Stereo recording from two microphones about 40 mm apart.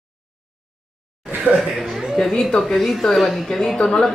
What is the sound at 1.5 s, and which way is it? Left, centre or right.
Speech, right.